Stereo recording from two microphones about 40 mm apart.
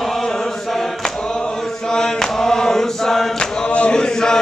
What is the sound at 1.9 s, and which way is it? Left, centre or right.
Mantra, centre.